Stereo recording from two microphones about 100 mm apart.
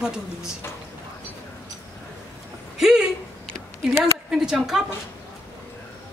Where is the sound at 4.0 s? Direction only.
5° right (ahead or behind).